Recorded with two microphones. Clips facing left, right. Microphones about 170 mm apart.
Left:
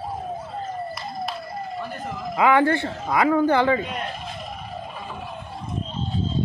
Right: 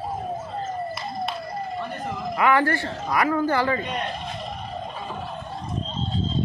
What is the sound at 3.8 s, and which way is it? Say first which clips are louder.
Speech: right 1 dB; 5° left (ahead or behind).